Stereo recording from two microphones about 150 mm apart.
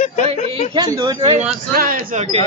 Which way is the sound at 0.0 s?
55° left (ahead or behind).